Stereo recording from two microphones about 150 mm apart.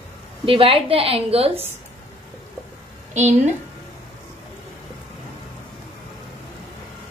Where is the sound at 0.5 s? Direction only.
40° right (ahead or behind).